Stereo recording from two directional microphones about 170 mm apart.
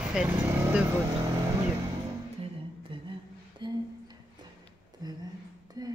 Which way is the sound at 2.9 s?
30° right (ahead or behind).